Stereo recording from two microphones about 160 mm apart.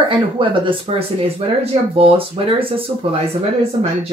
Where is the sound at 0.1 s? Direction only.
35° right (ahead or behind).